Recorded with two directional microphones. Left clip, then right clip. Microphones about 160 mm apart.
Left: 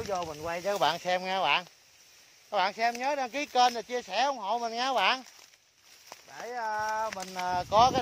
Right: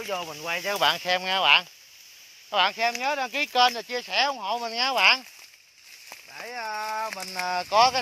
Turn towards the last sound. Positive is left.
turn(degrees=-10)  # may be behind; listen again after turning